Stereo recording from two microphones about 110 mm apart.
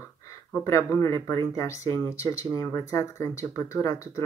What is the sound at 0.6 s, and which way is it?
Speech, 25° left (ahead or behind).